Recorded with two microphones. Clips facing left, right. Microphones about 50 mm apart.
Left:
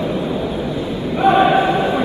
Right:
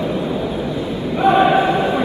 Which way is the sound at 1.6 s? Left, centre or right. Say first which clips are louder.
Even; centre.